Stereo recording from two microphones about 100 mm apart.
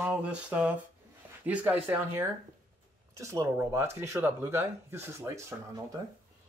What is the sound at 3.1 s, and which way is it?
Speech, 30° right (ahead or behind).